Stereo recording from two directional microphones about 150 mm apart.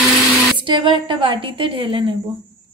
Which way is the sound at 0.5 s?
35° right (ahead or behind).